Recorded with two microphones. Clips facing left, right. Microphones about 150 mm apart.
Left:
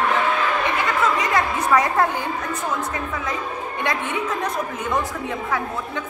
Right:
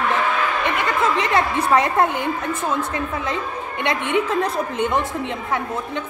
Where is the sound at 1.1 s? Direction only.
25° right (ahead or behind).